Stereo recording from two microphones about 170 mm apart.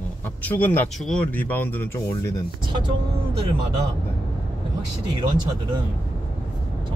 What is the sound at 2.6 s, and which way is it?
Speech, 30° right (ahead or behind).